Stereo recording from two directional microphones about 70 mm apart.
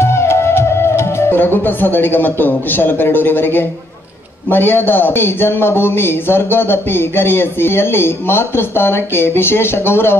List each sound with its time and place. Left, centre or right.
0.0 s speech: left